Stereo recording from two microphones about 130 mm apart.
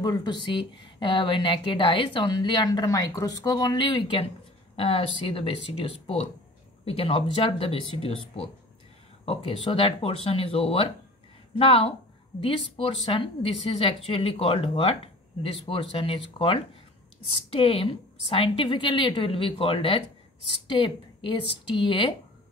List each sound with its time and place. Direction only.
0.0 s a woman's voice: 30° left (ahead or behind)